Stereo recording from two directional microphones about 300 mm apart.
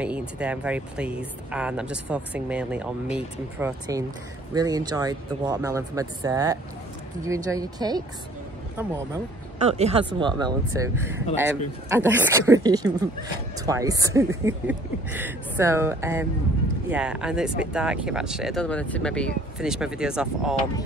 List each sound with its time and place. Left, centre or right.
0.0 s a woman's voice: centre
9.6 s a woman's voice: right; by 20.5 s centre